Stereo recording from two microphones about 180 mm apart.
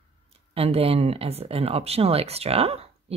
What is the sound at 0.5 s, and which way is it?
Speech, 35° right (ahead or behind).